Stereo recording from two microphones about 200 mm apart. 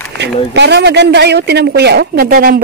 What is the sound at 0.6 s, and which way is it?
Speech, 55° right (ahead or behind).